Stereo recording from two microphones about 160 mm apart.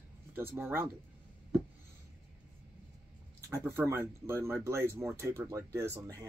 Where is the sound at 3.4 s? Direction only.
15° right (ahead or behind).